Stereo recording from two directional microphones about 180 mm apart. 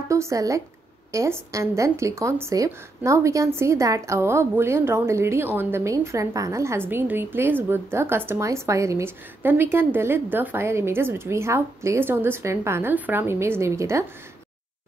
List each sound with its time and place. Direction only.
0.1 s speech: 15° right (ahead or behind)